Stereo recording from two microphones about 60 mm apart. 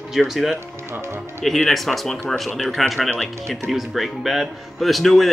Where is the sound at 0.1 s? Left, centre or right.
Centre.